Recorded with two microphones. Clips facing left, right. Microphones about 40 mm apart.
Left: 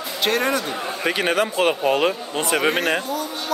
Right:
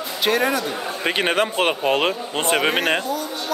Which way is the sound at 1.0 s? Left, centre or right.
Right.